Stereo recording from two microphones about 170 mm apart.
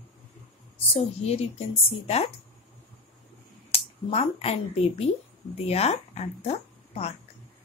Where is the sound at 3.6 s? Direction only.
35° left (ahead or behind).